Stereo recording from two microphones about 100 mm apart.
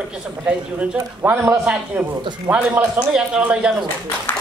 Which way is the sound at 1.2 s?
20° right (ahead or behind).